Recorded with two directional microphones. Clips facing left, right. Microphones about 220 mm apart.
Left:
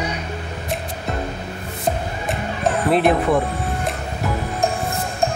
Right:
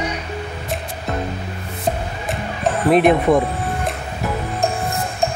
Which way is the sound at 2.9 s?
15° right (ahead or behind).